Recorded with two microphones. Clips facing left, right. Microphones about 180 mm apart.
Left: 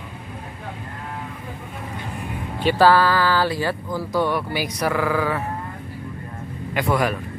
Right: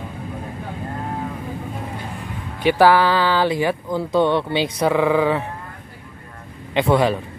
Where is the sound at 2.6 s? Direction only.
15° right (ahead or behind).